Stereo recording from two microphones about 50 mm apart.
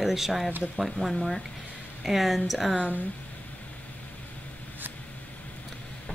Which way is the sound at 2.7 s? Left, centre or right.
Right.